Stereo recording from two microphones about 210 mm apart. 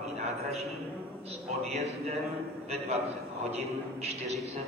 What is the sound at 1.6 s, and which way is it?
Speech, 30° right (ahead or behind).